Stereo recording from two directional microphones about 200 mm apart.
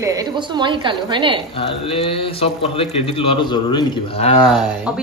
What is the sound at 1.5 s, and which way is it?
Speech, 25° left (ahead or behind).